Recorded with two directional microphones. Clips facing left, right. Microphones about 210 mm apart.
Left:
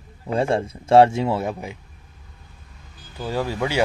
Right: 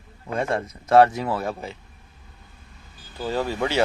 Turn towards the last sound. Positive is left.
turn(degrees=10)  # may be behind; listen again after turning